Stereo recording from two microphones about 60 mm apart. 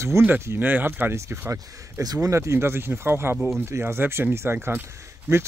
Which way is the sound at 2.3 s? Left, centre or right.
Right.